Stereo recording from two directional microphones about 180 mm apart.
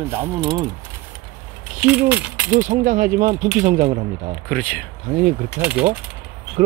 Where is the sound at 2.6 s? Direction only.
45° right (ahead or behind).